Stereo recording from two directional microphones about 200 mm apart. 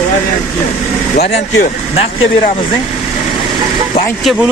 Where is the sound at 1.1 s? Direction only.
55° left (ahead or behind).